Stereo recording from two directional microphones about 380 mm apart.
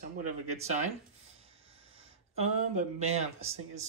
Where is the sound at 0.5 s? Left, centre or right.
Centre.